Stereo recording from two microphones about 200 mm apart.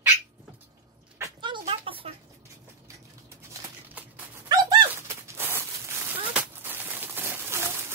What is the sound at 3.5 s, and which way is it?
Bird, 10° right (ahead or behind).